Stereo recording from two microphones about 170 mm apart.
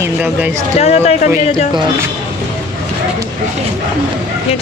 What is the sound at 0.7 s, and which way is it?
Speech, 40° left (ahead or behind).